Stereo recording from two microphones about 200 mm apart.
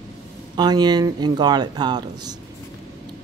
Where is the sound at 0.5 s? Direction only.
20° right (ahead or behind).